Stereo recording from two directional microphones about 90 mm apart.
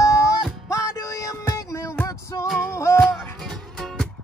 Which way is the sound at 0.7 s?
35° left (ahead or behind).